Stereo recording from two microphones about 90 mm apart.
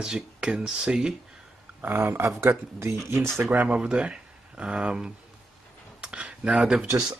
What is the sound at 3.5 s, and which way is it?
Speech, 15° right (ahead or behind).